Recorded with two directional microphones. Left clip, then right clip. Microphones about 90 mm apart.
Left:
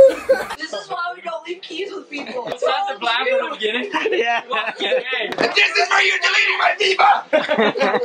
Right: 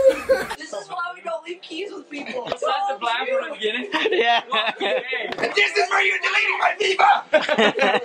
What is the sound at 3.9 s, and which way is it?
Speech, 35° right (ahead or behind).